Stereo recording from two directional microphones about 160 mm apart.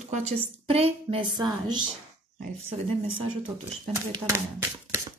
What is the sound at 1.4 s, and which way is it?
Speech, 25° right (ahead or behind).